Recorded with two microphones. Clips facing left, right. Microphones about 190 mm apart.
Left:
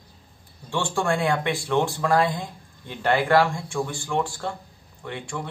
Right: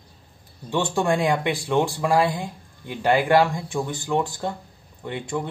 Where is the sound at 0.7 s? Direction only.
20° right (ahead or behind).